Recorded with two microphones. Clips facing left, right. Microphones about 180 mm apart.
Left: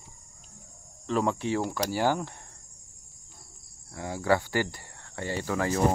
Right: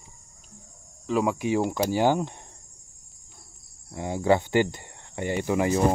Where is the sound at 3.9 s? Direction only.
20° right (ahead or behind).